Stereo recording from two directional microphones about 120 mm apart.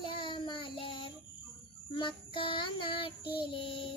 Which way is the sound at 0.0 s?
45° left (ahead or behind).